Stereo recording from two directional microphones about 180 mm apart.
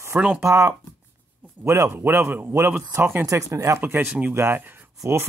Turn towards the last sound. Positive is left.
turn(degrees=-15)  # may be behind; listen again after turning